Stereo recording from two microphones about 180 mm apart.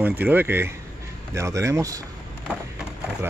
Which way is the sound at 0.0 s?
10° right (ahead or behind).